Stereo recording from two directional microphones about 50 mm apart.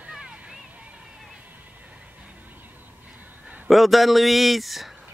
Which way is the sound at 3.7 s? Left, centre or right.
Centre.